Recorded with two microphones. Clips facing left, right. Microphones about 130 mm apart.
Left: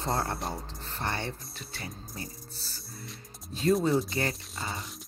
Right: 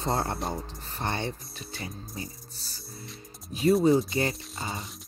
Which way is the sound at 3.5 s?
10° right (ahead or behind).